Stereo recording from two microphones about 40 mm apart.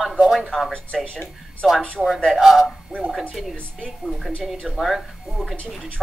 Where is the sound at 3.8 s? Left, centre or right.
Centre.